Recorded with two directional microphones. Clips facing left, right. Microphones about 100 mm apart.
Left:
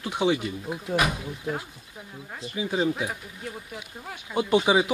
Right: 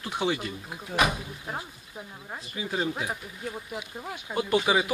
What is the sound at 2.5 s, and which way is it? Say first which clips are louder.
Speech: left 4 dB; 5° left (ahead or behind).